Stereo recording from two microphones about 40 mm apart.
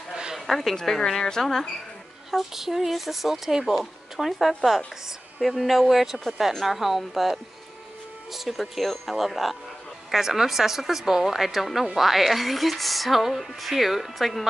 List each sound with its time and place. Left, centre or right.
0.1 s a sound: centre
0.5 s a woman's voice: centre
2.3 s speech: centre
5.6 s speech: centre
8.3 s speech: centre